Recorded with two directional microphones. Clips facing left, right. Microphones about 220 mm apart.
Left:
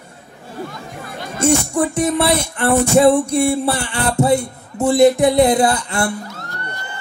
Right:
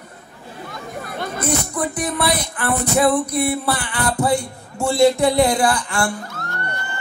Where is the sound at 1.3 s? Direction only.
30° left (ahead or behind).